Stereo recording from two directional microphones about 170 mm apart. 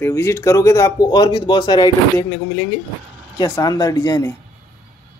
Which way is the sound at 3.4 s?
20° left (ahead or behind).